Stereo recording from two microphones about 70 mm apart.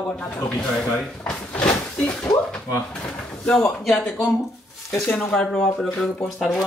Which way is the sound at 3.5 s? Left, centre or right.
Centre.